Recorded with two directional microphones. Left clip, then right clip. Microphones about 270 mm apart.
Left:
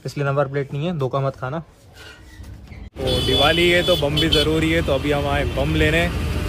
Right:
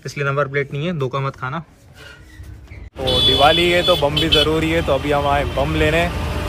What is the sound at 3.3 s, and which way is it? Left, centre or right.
Speech, centre.